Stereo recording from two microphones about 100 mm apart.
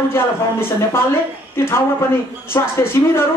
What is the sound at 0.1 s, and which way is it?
Speech, 25° left (ahead or behind).